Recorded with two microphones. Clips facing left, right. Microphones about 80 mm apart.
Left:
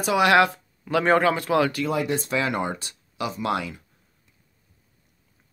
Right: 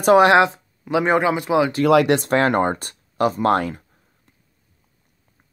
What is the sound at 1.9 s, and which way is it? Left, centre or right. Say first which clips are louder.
Speech: right 10 dB; right.